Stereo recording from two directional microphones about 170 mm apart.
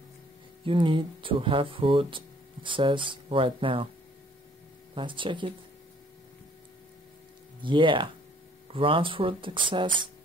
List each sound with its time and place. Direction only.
0.7 s speech: 30° right (ahead or behind)
4.9 s speech: 30° right (ahead or behind)
7.6 s speech: 30° right (ahead or behind)